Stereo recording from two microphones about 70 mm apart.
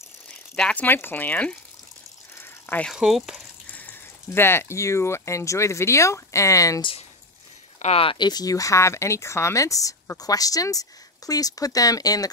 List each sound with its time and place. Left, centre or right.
0.6 s speech: centre
0.8 s speech: left
2.9 s speech: centre
3.6 s speech: left
8.2 s speech: left